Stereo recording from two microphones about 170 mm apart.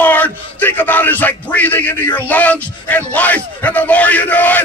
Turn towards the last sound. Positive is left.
turn(degrees=10)  # may be behind; listen again after turning